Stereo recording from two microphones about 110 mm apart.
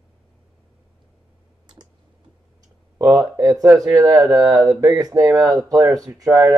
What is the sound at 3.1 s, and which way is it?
Speech, 35° right (ahead or behind).